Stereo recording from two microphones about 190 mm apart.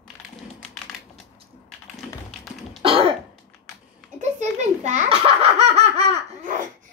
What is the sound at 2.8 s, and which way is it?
Throat clearing, 30° right (ahead or behind).